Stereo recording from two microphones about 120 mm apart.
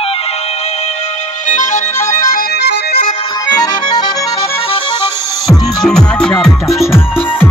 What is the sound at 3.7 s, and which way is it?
Accordion, 35° left (ahead or behind).